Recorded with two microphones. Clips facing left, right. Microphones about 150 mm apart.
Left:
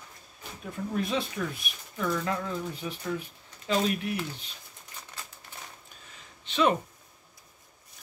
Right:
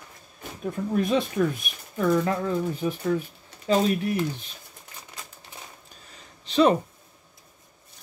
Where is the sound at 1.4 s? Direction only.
45° right (ahead or behind).